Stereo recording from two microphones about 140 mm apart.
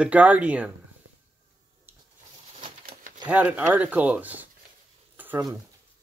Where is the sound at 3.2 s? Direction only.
10° right (ahead or behind).